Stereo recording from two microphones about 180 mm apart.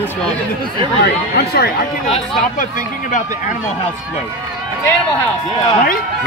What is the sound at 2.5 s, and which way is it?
Speech, 45° left (ahead or behind).